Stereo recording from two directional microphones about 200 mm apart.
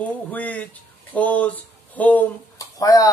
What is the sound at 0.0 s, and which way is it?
Speech, 10° left (ahead or behind).